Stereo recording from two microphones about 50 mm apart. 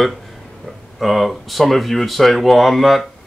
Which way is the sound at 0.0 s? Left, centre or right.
Centre.